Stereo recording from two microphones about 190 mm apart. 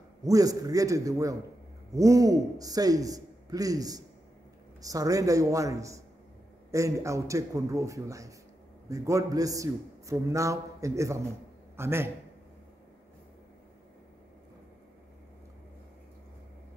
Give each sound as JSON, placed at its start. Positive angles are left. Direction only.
{"t": 0.2, "sound": "a man's voice", "side_deg": -20}